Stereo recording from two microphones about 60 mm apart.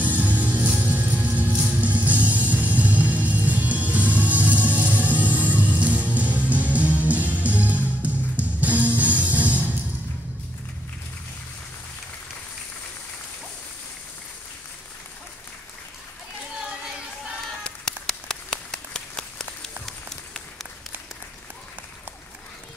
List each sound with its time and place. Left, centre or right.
0.0 s music: right
17.6 s a sound: centre
19.9 s run: centre